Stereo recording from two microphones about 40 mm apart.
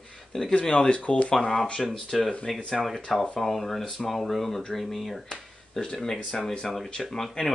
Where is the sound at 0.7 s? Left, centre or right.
Left.